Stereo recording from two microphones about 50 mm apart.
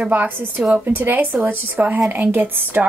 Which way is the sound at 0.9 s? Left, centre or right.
Right.